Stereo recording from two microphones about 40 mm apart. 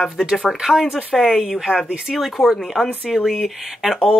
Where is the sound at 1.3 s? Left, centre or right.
Centre.